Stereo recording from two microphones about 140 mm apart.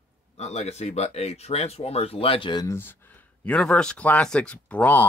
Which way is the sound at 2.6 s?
15° left (ahead or behind).